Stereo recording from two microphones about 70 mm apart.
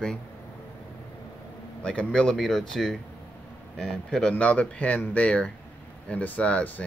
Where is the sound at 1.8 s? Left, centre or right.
Centre.